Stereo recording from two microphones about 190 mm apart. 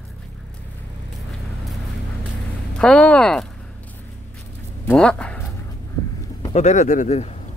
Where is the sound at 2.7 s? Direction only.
5° left (ahead or behind).